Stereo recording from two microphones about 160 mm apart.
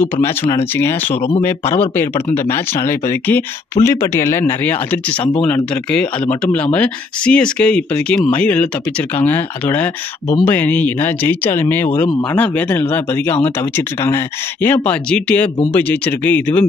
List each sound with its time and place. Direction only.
0.2 s speech: 15° left (ahead or behind)
1.1 s speech: 40° left (ahead or behind)
2.5 s speech: 15° left (ahead or behind)
12.1 s speech: 25° left (ahead or behind)
12.4 s speech: 10° left (ahead or behind)